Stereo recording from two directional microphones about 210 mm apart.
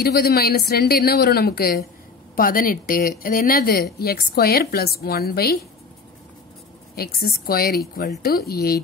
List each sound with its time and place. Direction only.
0.0 s speech: 45° left (ahead or behind)
7.0 s speech: 45° left (ahead or behind)